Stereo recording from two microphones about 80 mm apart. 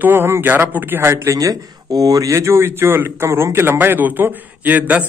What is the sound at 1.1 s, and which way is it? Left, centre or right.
A man's voice, right.